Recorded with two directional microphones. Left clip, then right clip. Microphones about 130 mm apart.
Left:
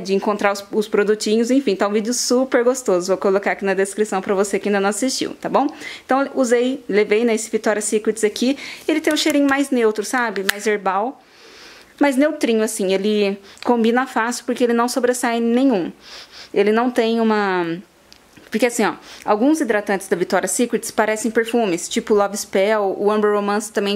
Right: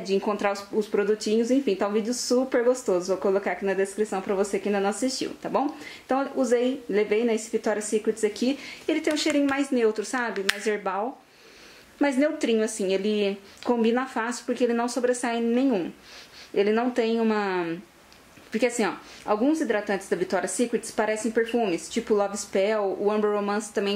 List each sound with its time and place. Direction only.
0.0 s speech: 35° left (ahead or behind)